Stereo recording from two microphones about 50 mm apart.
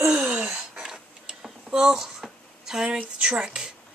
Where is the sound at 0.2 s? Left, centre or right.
Right.